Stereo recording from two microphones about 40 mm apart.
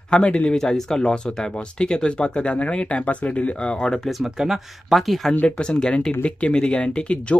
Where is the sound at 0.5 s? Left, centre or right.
Centre; by 3.5 s left.